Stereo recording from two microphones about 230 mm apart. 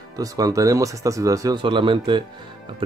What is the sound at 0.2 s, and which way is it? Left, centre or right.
Speech, centre.